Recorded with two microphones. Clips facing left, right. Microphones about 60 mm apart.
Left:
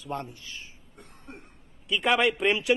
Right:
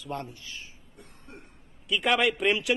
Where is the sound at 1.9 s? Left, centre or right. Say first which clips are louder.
Left 1 dB; centre.